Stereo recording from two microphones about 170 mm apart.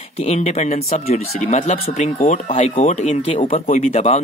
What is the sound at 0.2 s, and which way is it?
Speech, 40° left (ahead or behind).